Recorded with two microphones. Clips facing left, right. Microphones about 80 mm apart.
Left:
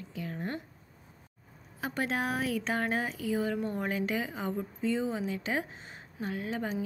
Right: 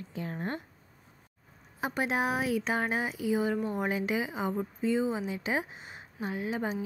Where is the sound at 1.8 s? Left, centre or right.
Centre.